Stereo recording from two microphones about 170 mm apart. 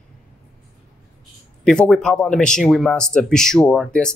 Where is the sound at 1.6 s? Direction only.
5° left (ahead or behind).